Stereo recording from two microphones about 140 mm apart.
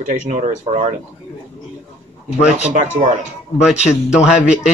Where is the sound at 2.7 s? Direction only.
60° right (ahead or behind).